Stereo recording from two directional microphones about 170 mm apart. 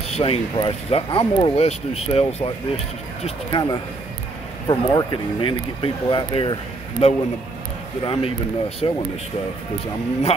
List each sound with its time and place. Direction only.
0.1 s speech: 35° left (ahead or behind)